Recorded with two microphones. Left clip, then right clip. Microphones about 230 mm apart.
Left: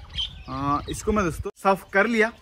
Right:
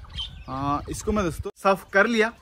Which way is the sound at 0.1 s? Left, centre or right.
Centre.